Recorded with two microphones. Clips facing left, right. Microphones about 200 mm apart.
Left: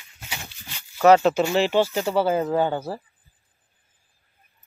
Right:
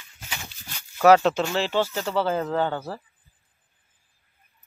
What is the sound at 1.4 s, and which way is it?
Speech, 15° left (ahead or behind).